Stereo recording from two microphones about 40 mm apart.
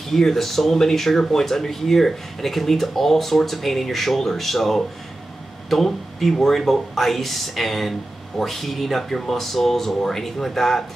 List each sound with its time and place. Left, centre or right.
0.1 s speech: centre